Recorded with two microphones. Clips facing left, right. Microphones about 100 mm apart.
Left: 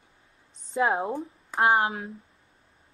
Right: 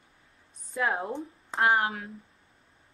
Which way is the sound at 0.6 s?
25° left (ahead or behind).